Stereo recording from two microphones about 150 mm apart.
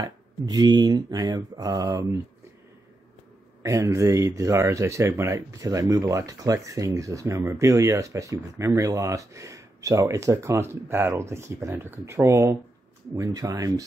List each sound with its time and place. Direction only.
0.0 s speech: 25° right (ahead or behind)
3.6 s speech: 20° right (ahead or behind)